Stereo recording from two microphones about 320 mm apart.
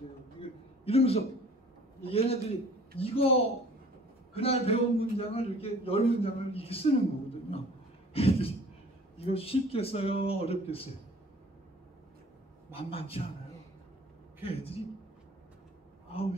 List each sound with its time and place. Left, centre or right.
0.4 s a sound: centre
2.0 s a man's voice: centre
8.1 s a sound: centre
9.1 s a man's voice: centre
12.7 s a man's voice: centre
14.4 s a man's voice: centre
16.1 s a man's voice: centre